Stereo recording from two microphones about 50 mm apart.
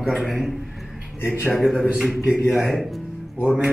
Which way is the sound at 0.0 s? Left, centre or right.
Centre.